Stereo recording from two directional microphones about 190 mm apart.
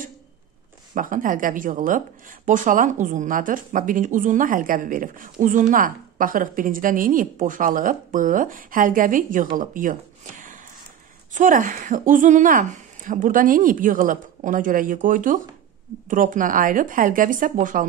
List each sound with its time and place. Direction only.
0.9 s speech: 45° right (ahead or behind)